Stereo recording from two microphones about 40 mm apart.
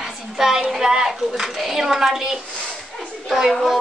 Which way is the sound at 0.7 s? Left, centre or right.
Centre.